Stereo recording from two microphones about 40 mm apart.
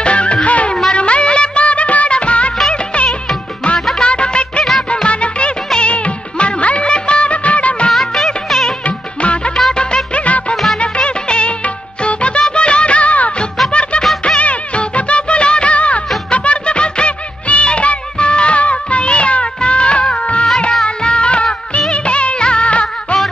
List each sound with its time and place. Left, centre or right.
0.0 s music of bollywood: left
5.0 s music: left
5.8 s music of bollywood: left
7.9 s music of bollywood: centre
8.8 s music: left
9.8 s music of bollywood: left
13.7 s music: left
14.4 s music of bollywood: left
16.3 s music: left
21.9 s music of bollywood: left